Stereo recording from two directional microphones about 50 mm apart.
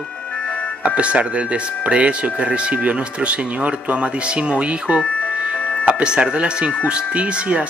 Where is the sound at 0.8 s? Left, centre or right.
Right.